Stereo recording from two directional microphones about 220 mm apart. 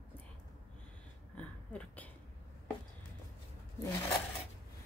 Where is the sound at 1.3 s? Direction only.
5° left (ahead or behind).